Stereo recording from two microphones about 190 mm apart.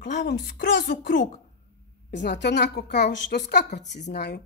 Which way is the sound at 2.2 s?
65° left (ahead or behind).